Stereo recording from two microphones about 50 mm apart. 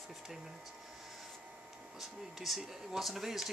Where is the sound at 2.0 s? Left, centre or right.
Centre.